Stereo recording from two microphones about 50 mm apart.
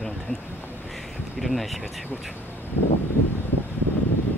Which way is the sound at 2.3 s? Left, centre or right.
Left.